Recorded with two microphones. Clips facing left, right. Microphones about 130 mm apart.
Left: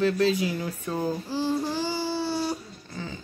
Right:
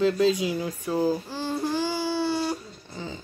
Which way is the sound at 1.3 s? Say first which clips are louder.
Left 1 dB; 5° left (ahead or behind).